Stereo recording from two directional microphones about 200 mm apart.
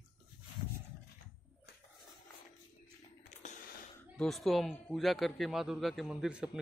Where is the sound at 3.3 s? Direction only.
35° left (ahead or behind).